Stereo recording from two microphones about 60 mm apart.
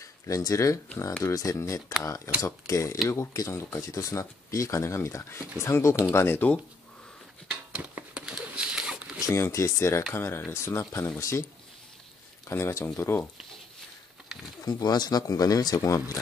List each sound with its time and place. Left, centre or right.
0.0 s speech: left
2.0 s speech: left
3.9 s speech: left
6.1 s speech: left
7.7 s a sound: centre
9.3 s speech: left
12.4 s speech: left
14.6 s speech: left